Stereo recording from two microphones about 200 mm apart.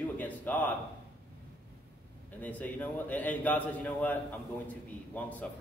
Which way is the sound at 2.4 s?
10° left (ahead or behind).